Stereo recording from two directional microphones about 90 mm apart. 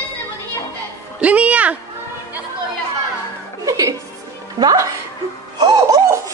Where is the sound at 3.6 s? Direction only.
40° right (ahead or behind).